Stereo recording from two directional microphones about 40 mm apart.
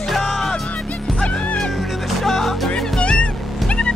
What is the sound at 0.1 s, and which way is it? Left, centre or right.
Music, centre.